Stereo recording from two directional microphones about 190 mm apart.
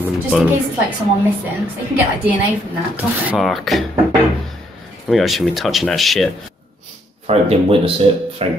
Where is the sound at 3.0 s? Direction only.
5° right (ahead or behind).